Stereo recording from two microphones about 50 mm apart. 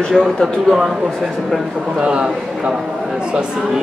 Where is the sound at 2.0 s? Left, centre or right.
Centre.